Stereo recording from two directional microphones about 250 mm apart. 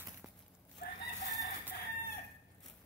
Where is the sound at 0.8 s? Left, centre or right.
Left.